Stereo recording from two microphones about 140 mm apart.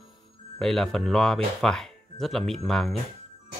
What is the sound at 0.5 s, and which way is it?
Speech, centre (ahead or behind).